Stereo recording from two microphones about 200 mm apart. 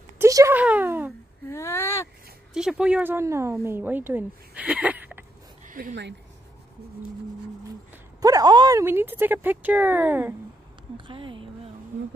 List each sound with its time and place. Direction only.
0.2 s a sound: 15° right (ahead or behind)
1.5 s a sound: 15° left (ahead or behind)
2.5 s speech: 5° right (ahead or behind)
5.7 s speech: 40° right (ahead or behind)
7.9 s speech: 20° right (ahead or behind)
11.1 s speech: 25° right (ahead or behind)